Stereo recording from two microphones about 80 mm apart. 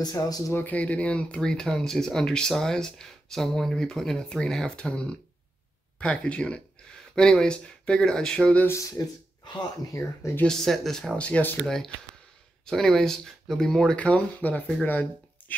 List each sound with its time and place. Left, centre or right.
0.0 s speech: left
0.5 s speech: left
8.6 s speech: left
10.4 s speech: centre
11.6 s speech: centre
13.9 s speech: centre
14.9 s a sound: left